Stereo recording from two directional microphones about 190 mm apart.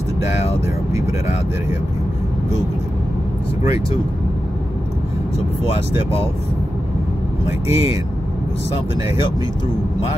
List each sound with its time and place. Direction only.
7.4 s speech: 15° right (ahead or behind)